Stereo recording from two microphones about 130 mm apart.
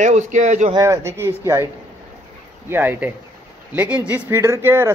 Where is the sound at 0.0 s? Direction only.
65° right (ahead or behind).